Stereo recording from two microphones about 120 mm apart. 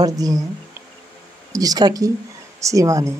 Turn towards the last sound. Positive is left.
turn(degrees=-25)  # may be behind; listen again after turning